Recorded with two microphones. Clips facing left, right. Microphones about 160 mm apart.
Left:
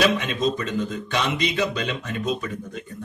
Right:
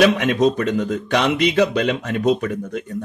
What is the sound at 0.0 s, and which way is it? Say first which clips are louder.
Speech: right 6 dB; 75° right (ahead or behind).